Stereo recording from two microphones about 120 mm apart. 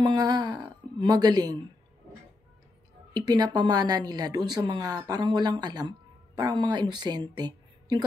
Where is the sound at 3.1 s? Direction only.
35° right (ahead or behind).